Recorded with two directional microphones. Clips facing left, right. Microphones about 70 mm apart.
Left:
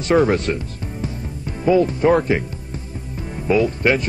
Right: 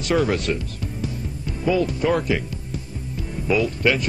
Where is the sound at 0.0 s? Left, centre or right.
Left.